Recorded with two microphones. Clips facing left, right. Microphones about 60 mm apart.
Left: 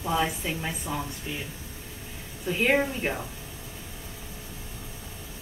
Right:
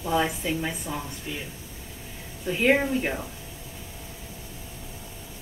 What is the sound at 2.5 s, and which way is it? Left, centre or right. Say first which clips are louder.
Speech: right 2 dB; centre.